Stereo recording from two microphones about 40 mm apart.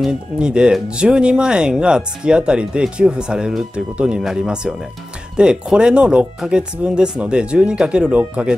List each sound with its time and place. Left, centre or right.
0.1 s speech: right